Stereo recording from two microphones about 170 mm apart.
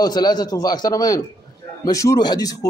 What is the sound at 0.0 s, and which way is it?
A man's voice, 25° left (ahead or behind).